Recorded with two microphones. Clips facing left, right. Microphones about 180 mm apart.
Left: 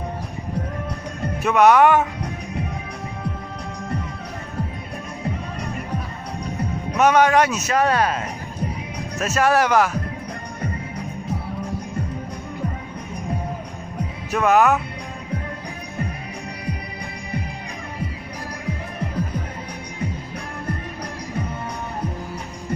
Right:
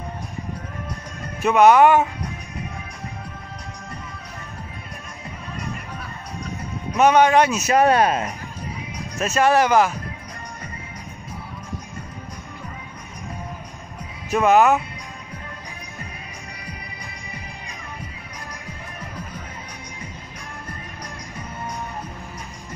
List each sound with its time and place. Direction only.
1.4 s speech: centre (ahead or behind)
7.0 s speech: centre (ahead or behind)
7.6 s speech: 20° right (ahead or behind)
9.2 s speech: 5° left (ahead or behind)
14.3 s speech: centre (ahead or behind)